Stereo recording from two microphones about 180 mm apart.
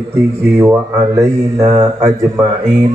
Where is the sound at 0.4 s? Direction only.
15° right (ahead or behind).